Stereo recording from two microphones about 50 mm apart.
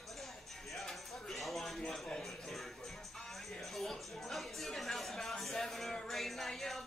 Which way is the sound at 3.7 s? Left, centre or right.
Centre.